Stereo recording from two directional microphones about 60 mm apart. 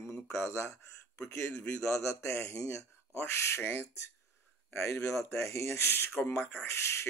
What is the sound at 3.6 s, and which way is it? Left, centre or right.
Speech, left.